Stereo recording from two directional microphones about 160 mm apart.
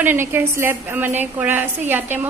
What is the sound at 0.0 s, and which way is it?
A woman's voice, 15° right (ahead or behind).